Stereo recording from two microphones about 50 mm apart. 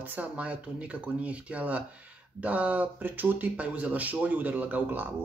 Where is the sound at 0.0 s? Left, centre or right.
Right.